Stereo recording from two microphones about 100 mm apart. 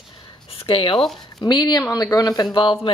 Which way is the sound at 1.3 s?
45° left (ahead or behind).